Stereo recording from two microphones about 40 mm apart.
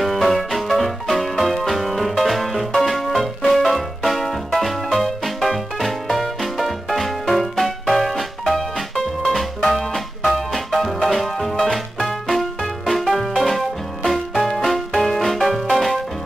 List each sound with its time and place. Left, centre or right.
0.0 s music: centre